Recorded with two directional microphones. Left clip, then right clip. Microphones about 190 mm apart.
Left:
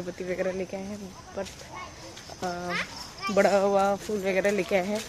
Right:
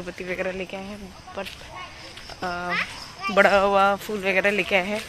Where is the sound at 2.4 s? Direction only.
Centre (ahead or behind).